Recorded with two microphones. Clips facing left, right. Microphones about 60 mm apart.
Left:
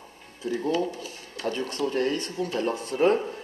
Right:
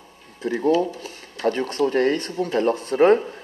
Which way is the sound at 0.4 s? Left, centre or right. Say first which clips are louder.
Right 6 dB; right.